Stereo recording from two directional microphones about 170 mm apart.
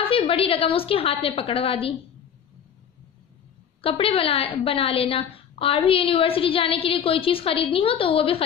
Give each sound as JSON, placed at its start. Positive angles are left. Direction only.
{"t": 0.0, "sound": "a woman's voice", "side_deg": 35}
{"t": 3.8, "sound": "a woman's voice", "side_deg": 35}